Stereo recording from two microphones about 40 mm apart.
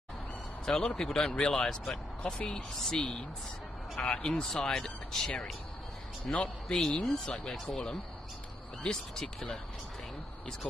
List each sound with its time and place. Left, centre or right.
0.7 s speech: centre
6.3 s a man's voice: left
6.7 s speech: centre